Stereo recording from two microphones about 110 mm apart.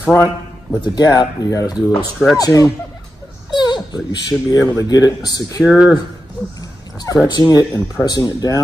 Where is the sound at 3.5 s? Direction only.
40° left (ahead or behind).